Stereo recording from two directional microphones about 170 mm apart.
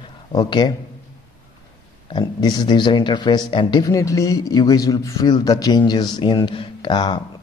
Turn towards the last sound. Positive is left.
turn(degrees=30)  # may be behind; listen again after turning